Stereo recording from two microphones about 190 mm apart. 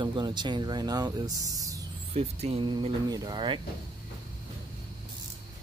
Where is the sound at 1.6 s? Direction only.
20° right (ahead or behind).